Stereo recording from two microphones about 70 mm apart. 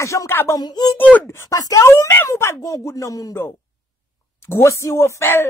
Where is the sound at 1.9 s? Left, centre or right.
Left.